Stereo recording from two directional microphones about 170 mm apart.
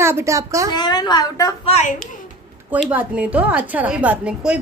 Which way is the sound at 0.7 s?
25° left (ahead or behind).